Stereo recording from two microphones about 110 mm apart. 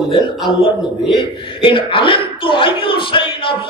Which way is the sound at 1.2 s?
50° left (ahead or behind).